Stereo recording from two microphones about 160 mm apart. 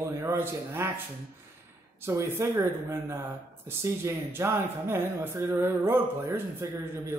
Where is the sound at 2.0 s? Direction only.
15° right (ahead or behind).